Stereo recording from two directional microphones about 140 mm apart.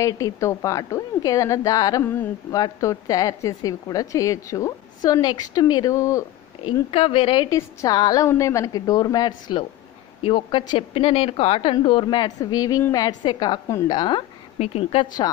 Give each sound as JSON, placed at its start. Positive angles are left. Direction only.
{"t": 0.0, "sound": "a woman's voice", "side_deg": 20}
{"t": 6.6, "sound": "a woman's voice", "side_deg": 40}
{"t": 7.4, "sound": "a woman's voice", "side_deg": 25}
{"t": 14.6, "sound": "a woman's voice", "side_deg": 45}